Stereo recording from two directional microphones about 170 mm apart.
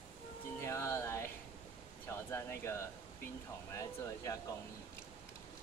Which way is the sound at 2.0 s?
15° left (ahead or behind).